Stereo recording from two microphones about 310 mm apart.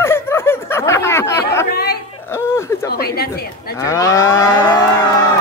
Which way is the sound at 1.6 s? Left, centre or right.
Left.